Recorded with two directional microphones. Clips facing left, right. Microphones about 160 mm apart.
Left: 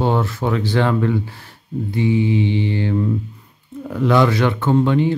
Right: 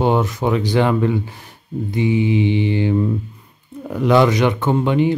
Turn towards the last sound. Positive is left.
turn(degrees=-15)  # may be behind; listen again after turning